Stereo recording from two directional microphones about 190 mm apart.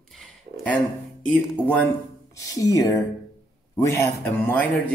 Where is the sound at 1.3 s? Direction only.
5° left (ahead or behind).